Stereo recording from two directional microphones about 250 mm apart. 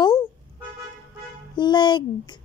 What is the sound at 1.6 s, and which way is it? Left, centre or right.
Speech, centre.